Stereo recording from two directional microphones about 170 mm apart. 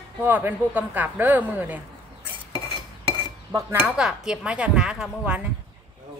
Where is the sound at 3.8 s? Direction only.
5° right (ahead or behind).